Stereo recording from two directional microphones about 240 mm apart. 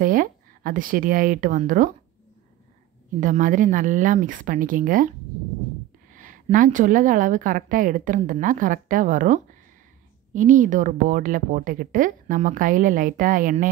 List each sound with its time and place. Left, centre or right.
0.0 s a woman's voice: right
3.2 s a woman's voice: right
6.1 s a woman's voice: right